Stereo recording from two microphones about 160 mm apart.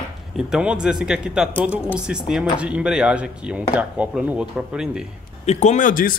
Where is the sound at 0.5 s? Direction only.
5° right (ahead or behind).